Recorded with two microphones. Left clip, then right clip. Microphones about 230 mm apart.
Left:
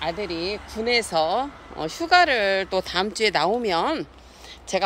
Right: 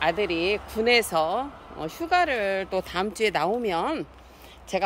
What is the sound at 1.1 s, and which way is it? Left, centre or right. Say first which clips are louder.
Speech: left 3 dB; centre.